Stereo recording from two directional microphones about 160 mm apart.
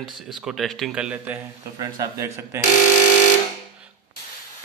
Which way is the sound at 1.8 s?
20° right (ahead or behind).